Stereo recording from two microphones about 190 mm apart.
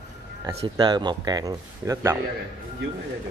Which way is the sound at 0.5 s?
25° right (ahead or behind).